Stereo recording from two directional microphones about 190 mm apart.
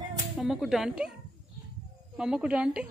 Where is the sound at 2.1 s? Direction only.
5° right (ahead or behind).